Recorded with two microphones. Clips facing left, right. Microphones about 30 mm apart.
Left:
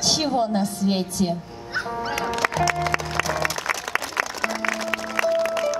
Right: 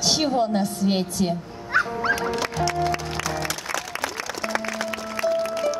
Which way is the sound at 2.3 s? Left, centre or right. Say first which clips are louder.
Left 2 dB; left.